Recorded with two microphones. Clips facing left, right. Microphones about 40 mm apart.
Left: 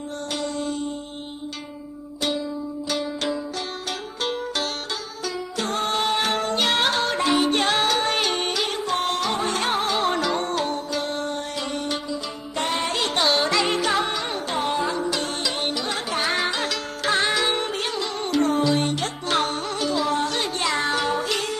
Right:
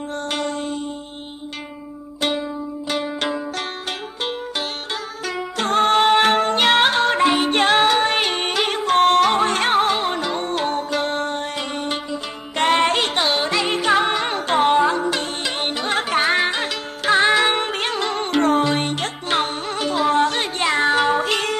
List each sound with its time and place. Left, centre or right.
0.3 s music: right
2.9 s music: right
4.2 s music: right
5.2 s music: right
9.9 s music: centre
10.4 s music: right
12.5 s music: right
13.1 s music: right
14.0 s music: right
16.3 s music: right
17.4 s music: right
19.3 s music: right